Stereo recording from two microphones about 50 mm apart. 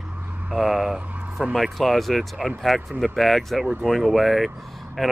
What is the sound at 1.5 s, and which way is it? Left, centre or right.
Speech, centre.